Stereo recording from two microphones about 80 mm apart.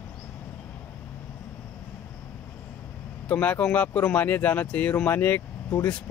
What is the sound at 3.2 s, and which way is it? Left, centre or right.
Speech, centre.